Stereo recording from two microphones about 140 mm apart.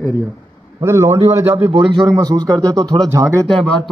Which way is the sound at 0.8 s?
20° right (ahead or behind).